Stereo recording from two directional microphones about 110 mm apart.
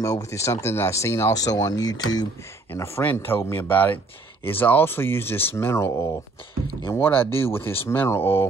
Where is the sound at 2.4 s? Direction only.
25° left (ahead or behind).